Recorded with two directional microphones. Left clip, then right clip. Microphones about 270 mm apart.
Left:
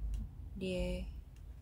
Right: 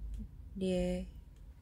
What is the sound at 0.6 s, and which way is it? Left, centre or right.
Speech, centre.